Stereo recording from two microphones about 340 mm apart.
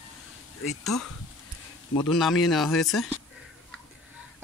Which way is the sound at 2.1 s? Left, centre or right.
Centre.